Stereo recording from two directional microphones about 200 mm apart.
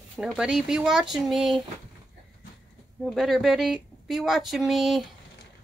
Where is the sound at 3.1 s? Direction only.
Centre (ahead or behind).